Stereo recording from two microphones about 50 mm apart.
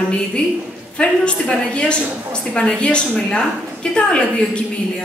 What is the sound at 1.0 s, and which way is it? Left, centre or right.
A woman's voice, centre.